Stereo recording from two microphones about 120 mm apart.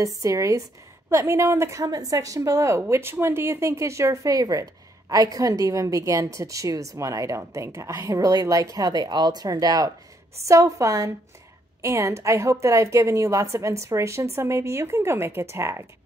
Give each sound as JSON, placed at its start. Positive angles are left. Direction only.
{"t": 0.0, "sound": "a woman's voice", "side_deg": -25}